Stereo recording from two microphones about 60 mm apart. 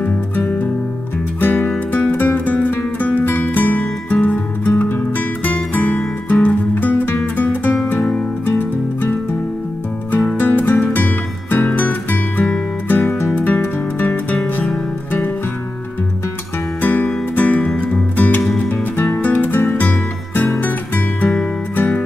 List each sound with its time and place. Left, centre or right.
1.4 s music: left
8.5 s music: left
10.1 s music: left
16.8 s music: left
18.4 s music: centre
18.7 s music: left